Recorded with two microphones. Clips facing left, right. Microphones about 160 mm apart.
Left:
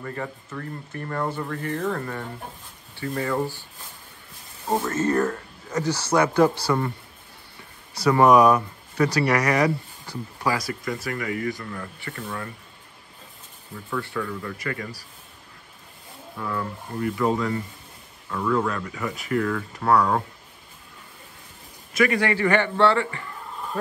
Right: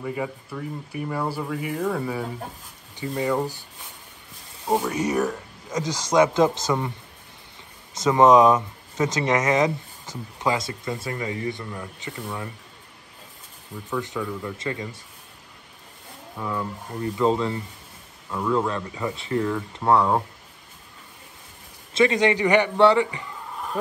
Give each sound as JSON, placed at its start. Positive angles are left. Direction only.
{"t": 0.0, "sound": "speech", "side_deg": -10}
{"t": 3.2, "sound": "speech", "side_deg": -15}
{"t": 4.6, "sound": "speech", "side_deg": -15}
{"t": 7.9, "sound": "speech", "side_deg": -20}
{"t": 13.8, "sound": "speech", "side_deg": -20}
{"t": 16.3, "sound": "speech", "side_deg": -15}
{"t": 21.9, "sound": "speech", "side_deg": -20}